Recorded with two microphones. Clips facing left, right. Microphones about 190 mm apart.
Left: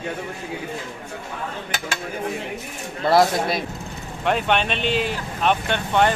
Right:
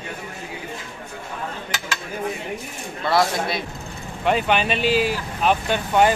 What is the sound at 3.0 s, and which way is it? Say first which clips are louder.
Speech: left 3 dB; 40° left (ahead or behind).